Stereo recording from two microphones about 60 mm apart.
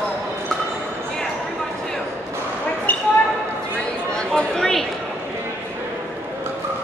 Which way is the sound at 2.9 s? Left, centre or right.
Left.